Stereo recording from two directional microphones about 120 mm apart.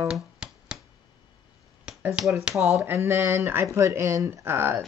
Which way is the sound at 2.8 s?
25° right (ahead or behind).